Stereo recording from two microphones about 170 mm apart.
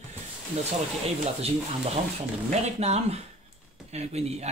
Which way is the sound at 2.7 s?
40° right (ahead or behind).